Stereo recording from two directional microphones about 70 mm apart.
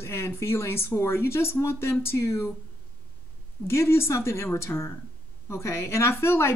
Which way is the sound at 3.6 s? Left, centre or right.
Left.